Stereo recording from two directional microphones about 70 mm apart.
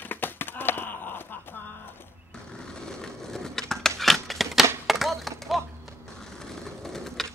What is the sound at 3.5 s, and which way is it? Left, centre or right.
Typewriter, centre.